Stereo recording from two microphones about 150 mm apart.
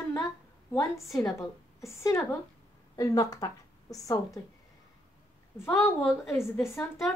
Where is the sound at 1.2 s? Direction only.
20° left (ahead or behind).